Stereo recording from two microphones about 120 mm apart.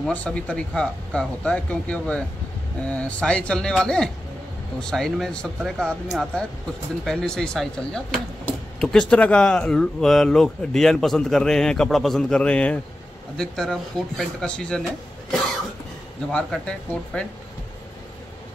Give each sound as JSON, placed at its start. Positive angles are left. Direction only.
{"t": 0.0, "sound": "speech", "side_deg": 10}
{"t": 16.3, "sound": "speech", "side_deg": 10}